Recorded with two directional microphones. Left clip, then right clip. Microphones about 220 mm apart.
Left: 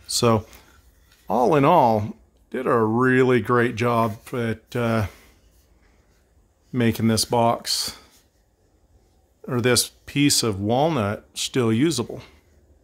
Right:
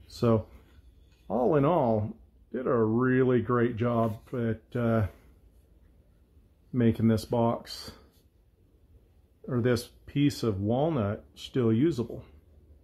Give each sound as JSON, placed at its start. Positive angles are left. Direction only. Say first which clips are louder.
{"t": 0.0, "sound": "a sound", "louder": "left 7 dB", "side_deg": 40}
{"t": 1.2, "sound": "speech", "louder": "left 7 dB", "side_deg": 40}
{"t": 6.7, "sound": "speech", "louder": "left 5 dB", "side_deg": 35}
{"t": 9.5, "sound": "speech", "louder": "left 8 dB", "side_deg": 35}